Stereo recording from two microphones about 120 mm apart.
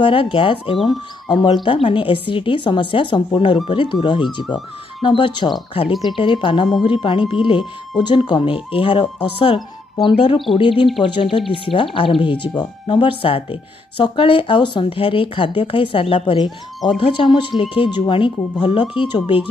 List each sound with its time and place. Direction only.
0.0 s speech: 45° left (ahead or behind)